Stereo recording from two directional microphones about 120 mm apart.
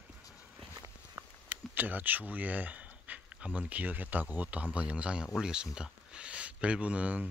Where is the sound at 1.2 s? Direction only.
25° right (ahead or behind).